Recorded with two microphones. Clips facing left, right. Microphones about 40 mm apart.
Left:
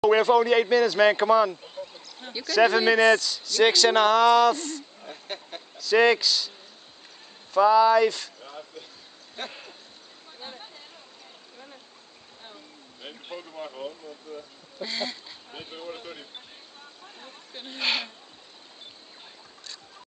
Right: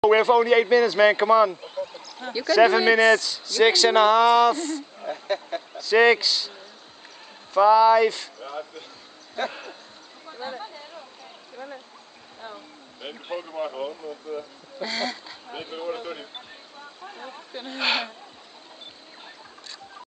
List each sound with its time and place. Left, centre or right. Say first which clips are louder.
0.0 s a man's voice: right 2 dB; right
7.5 s speech: right 2 dB; right; by 9.8 s centre
11.5 s a sound: right 11 dB; right
12.4 s speech: right 8 dB; centre
14.8 s speech: right 4 dB; centre
15.4 s speech: right 7 dB; centre
17.0 s a sound: right 9 dB; right
17.5 s speech: right 3 dB; centre